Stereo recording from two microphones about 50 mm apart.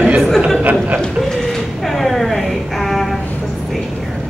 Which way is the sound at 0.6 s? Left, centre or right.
Right.